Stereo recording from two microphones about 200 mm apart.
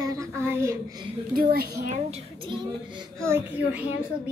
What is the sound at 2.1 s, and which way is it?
Speech, 25° right (ahead or behind).